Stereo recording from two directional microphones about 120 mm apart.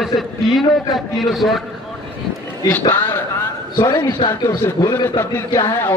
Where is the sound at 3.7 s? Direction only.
20° left (ahead or behind).